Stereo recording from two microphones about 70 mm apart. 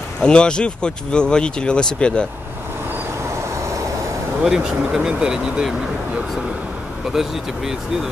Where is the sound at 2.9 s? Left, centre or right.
Right.